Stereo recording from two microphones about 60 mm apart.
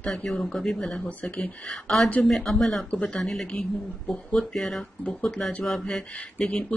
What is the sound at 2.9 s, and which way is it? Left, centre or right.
Speech, centre.